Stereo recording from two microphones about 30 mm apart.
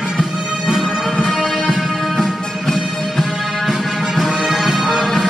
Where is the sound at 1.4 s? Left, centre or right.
Centre.